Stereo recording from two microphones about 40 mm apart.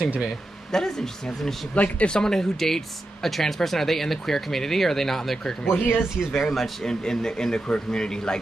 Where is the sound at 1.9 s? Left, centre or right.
Left.